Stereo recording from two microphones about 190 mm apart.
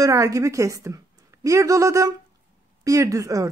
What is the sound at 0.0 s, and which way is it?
A woman's voice, 15° right (ahead or behind).